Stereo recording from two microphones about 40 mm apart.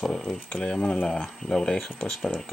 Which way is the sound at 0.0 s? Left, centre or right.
Centre.